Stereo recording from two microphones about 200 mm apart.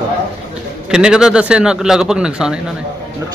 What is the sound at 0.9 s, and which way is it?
A man's voice, 5° right (ahead or behind).